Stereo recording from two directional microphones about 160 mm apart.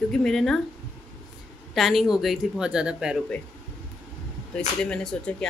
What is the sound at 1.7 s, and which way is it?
Speech, centre (ahead or behind).